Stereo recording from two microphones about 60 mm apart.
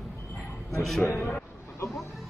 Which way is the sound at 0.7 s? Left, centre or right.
Centre.